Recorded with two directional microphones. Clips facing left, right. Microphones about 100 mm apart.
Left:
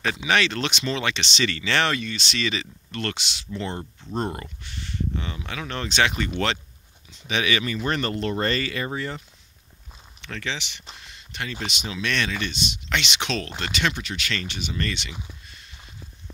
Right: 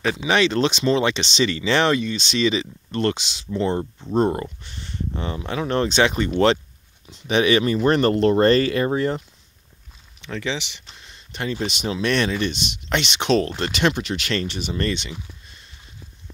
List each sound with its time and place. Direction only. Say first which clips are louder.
0.3 s speech: right 5 dB; 25° right (ahead or behind)
1.5 s speech: right 5 dB; 15° right (ahead or behind); by 9.2 s 50° right (ahead or behind)
10.2 s speech: right 5 dB; 15° right (ahead or behind)
11.3 s speech: right 6 dB; 30° right (ahead or behind)
11.8 s speech: right 6 dB; 45° right (ahead or behind)
14.9 s speech: right 6 dB; 30° right (ahead or behind)